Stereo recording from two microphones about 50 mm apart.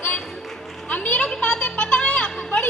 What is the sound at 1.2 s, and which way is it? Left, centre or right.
Music, centre.